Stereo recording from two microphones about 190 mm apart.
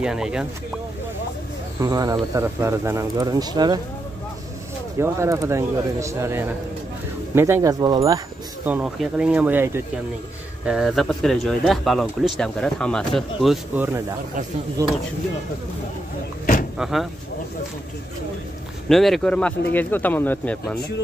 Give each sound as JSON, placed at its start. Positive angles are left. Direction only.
{"t": 0.0, "sound": "speech", "side_deg": -5}
{"t": 1.8, "sound": "speech", "side_deg": -20}
{"t": 4.9, "sound": "speech", "side_deg": -15}
{"t": 8.6, "sound": "speech", "side_deg": -5}
{"t": 16.7, "sound": "speech", "side_deg": 0}
{"t": 18.9, "sound": "speech", "side_deg": 0}